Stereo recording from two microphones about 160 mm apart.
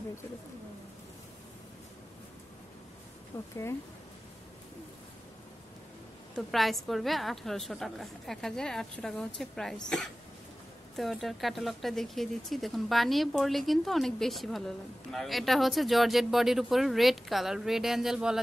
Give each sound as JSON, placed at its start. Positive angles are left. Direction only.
{"t": 3.3, "sound": "speech", "side_deg": 15}
{"t": 6.3, "sound": "a woman's voice", "side_deg": 0}